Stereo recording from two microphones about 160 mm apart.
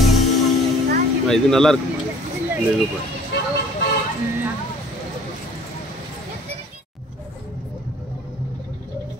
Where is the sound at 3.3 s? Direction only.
90° left.